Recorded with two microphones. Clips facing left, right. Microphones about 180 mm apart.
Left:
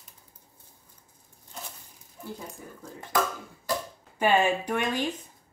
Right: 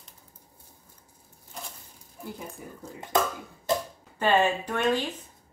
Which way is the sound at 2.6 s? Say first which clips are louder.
Right 2 dB; 15° right (ahead or behind).